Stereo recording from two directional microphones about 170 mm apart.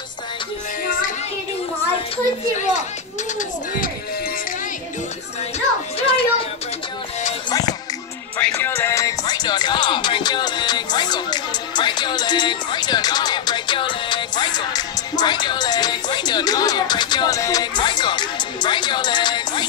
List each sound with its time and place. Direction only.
2.5 s speech: 45° left (ahead or behind)
5.9 s a sound: 35° left (ahead or behind)
7.4 s music: 20° left (ahead or behind)
8.4 s music: 10° left (ahead or behind); by 19.6 s 25° left (ahead or behind)